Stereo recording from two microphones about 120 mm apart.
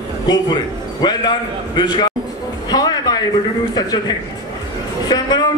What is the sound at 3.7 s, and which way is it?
A man's voice, 35° left (ahead or behind).